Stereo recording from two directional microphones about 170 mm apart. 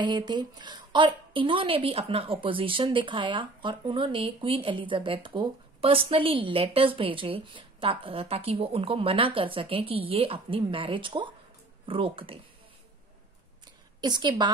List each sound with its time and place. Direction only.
0.0 s a woman's voice: 25° right (ahead or behind)
14.0 s a woman's voice: 25° right (ahead or behind)